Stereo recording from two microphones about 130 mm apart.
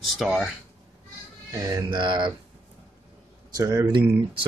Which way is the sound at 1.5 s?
25° right (ahead or behind).